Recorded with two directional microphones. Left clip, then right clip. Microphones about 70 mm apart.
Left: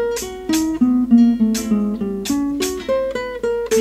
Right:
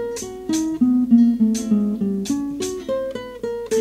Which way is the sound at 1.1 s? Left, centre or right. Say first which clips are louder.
Left 3 dB; left.